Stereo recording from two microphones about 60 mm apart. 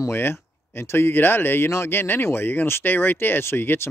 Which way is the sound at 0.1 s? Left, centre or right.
Left.